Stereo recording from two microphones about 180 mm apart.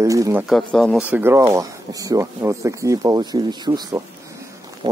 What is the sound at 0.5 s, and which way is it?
Speech, 5° left (ahead or behind).